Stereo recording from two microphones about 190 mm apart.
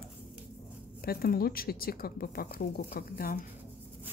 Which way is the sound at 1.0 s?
50° left (ahead or behind).